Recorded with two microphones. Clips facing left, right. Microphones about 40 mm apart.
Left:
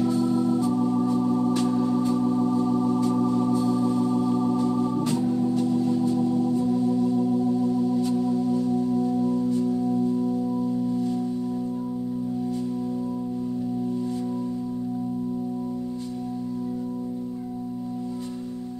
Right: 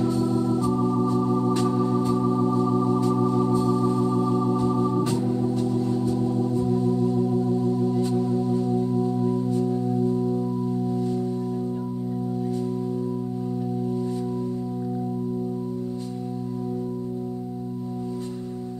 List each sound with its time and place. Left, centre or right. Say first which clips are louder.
0.1 s organ: left 1 dB; left
1.2 s organ: even; right
2.2 s organ: even; right
7.8 s singing bowl: even; right